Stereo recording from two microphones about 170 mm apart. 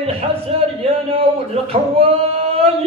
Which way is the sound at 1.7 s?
35° right (ahead or behind).